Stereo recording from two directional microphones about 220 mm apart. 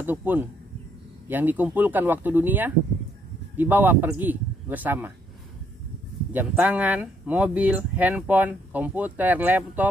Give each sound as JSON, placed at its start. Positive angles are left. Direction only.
{"t": 0.0, "sound": "speech", "side_deg": -10}
{"t": 6.3, "sound": "speech", "side_deg": -5}